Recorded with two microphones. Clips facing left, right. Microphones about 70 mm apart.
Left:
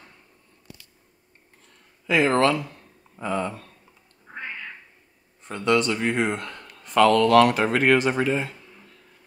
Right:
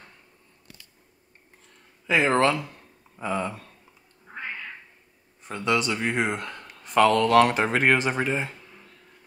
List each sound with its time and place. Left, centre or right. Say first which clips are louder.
2.0 s speech: left 1 dB; right
5.4 s speech: left 3 dB; centre